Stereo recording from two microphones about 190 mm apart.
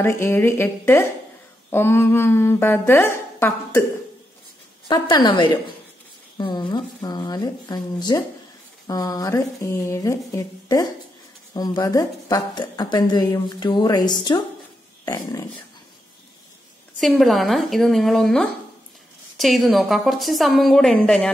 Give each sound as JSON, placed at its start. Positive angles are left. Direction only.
{"t": 0.0, "sound": "speech", "side_deg": 10}
{"t": 4.8, "sound": "a woman's voice", "side_deg": 25}
{"t": 17.0, "sound": "a woman's voice", "side_deg": 0}